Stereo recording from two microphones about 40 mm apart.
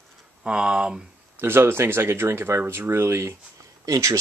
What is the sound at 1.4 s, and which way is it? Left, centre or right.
Speech, right.